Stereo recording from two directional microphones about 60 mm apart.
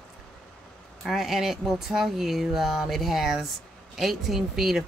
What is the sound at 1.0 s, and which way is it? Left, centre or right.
Speech, centre.